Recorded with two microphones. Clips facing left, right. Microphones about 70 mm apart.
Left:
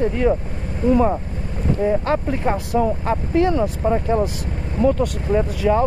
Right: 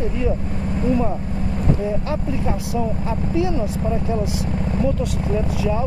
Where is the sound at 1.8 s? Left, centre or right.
Left.